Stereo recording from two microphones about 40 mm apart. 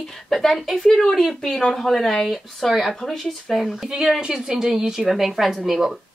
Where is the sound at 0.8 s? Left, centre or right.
Centre.